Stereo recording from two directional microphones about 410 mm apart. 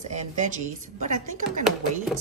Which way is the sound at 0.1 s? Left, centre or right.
Centre.